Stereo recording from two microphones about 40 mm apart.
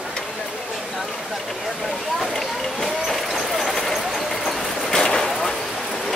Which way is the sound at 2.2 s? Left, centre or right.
Centre.